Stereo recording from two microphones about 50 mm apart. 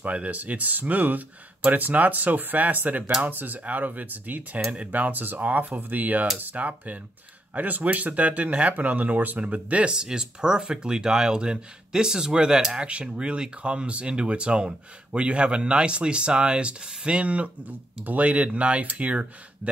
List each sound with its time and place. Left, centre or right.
0.0 s speech: right